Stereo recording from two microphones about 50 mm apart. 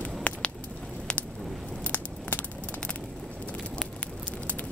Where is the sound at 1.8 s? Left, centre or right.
Left.